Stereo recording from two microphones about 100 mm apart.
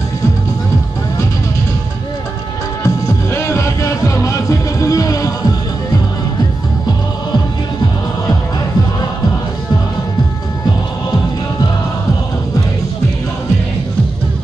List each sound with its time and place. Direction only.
2.8 s music: 30° left (ahead or behind)